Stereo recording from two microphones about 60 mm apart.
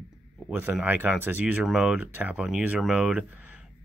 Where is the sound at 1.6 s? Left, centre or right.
Centre.